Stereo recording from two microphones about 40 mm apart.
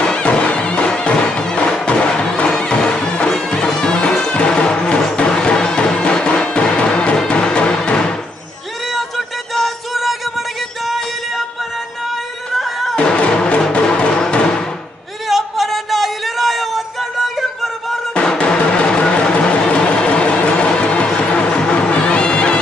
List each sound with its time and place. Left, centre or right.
0.0 s music: left
8.9 s music: centre
12.5 s music: centre
12.9 s music: left
15.2 s a sound: centre
18.1 s music: left